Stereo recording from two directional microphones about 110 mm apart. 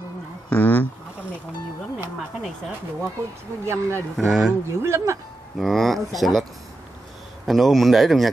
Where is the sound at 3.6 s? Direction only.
25° right (ahead or behind).